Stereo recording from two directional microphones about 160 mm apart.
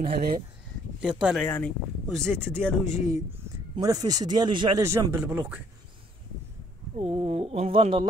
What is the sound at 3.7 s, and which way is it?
Speech, 20° right (ahead or behind).